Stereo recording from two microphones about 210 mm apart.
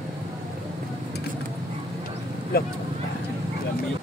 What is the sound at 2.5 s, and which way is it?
Speech, 45° left (ahead or behind).